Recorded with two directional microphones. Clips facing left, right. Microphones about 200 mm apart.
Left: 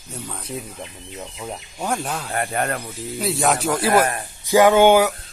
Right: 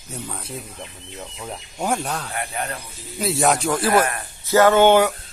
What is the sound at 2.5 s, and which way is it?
Speech, 60° left (ahead or behind).